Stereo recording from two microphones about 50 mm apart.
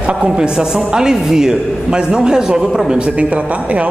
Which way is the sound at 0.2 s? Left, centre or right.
Centre.